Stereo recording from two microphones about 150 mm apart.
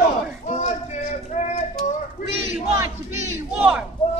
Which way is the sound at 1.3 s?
50° left (ahead or behind).